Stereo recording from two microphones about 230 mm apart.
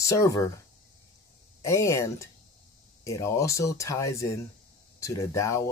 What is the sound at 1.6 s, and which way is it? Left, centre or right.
Speech, centre.